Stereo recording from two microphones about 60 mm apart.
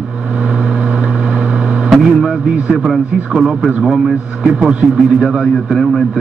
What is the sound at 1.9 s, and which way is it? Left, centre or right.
Speech, centre.